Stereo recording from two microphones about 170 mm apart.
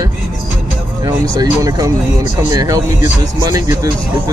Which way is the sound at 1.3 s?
20° right (ahead or behind).